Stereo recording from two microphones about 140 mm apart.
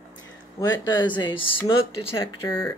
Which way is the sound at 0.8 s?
35° left (ahead or behind).